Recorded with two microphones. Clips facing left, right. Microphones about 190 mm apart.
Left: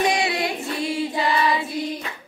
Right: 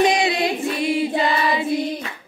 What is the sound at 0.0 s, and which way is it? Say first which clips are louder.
Choir: right 4 dB; 20° right (ahead or behind).